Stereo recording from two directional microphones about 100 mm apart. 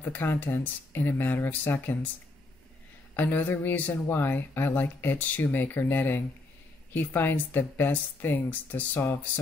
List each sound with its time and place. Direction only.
0.0 s speech: 20° left (ahead or behind)
3.2 s speech: 15° left (ahead or behind)